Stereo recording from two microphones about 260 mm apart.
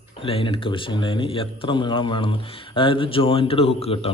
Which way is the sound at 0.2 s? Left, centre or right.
Left.